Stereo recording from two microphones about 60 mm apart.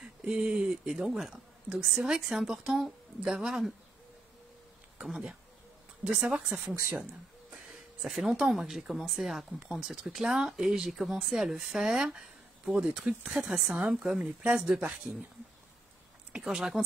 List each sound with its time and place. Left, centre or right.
0.0 s speech: centre
6.0 s speech: centre
16.4 s speech: centre